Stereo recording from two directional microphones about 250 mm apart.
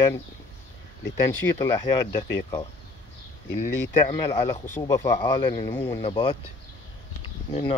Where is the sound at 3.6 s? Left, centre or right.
Centre.